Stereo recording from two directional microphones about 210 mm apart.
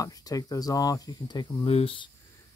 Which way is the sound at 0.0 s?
15° left (ahead or behind).